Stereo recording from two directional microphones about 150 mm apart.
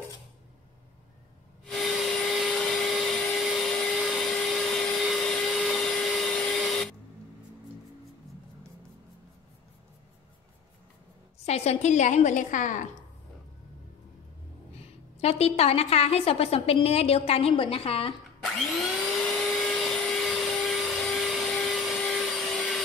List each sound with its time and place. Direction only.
1.7 s vacuum cleaner: centre (ahead or behind)
11.4 s a woman's voice: 45° left (ahead or behind)
14.7 s a woman's voice: 45° left (ahead or behind)
18.4 s vacuum cleaner: centre (ahead or behind)